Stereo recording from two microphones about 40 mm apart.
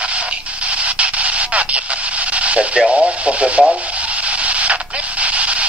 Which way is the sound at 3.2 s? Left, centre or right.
Right.